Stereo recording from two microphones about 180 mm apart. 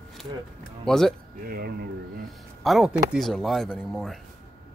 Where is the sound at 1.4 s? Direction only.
55° right (ahead or behind).